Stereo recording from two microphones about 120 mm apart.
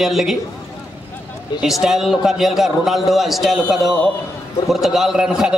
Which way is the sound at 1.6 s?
5° right (ahead or behind).